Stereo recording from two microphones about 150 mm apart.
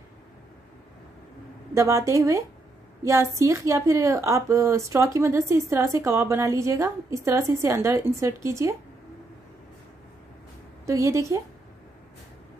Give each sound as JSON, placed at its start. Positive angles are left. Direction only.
{"t": 1.7, "sound": "a woman's voice", "side_deg": -20}
{"t": 10.9, "sound": "a woman's voice", "side_deg": -20}